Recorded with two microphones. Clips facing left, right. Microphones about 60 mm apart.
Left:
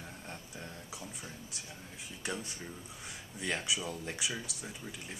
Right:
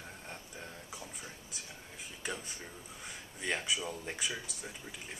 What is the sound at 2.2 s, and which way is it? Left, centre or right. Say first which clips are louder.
Speech: left 2 dB; centre.